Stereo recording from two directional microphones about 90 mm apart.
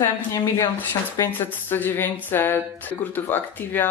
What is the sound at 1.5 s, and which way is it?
Speech, 20° left (ahead or behind).